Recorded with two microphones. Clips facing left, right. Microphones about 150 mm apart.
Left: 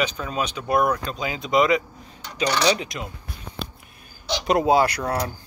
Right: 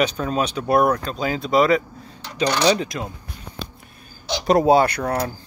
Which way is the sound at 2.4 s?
35° right (ahead or behind).